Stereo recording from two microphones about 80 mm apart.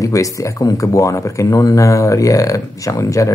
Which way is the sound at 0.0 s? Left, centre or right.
Left.